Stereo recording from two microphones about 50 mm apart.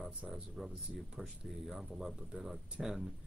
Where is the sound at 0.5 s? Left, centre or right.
Centre.